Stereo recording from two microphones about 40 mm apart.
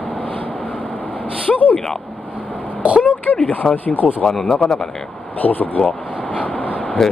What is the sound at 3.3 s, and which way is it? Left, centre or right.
Speech, left.